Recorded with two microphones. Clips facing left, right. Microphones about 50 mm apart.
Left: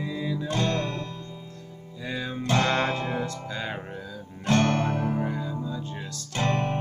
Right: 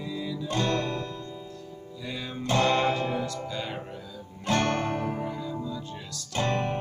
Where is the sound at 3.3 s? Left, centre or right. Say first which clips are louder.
Left 1 dB; left.